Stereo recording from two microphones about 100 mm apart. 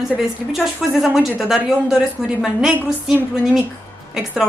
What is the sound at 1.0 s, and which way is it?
A woman's voice, 5° right (ahead or behind).